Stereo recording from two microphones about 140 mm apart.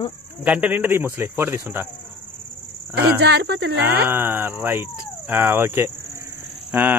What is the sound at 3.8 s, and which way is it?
Speech, 15° right (ahead or behind).